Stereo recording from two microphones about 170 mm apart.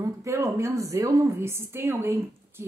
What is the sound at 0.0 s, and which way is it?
Speech, 15° right (ahead or behind).